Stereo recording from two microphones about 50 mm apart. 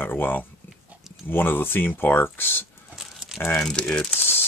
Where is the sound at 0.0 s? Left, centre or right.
Left.